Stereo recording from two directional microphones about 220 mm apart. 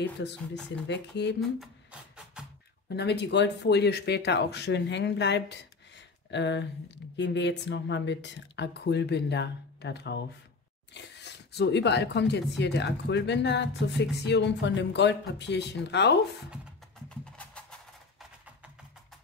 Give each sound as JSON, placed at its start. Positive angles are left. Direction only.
{"t": 0.2, "sound": "speech", "side_deg": 55}
{"t": 1.4, "sound": "music", "side_deg": 0}
{"t": 3.0, "sound": "speech", "side_deg": 50}
{"t": 17.1, "sound": "music", "side_deg": 5}